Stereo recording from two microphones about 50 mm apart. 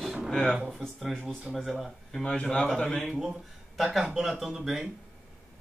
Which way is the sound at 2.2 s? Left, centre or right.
Centre.